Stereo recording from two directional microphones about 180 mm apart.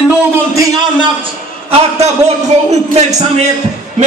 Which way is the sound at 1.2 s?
35° right (ahead or behind).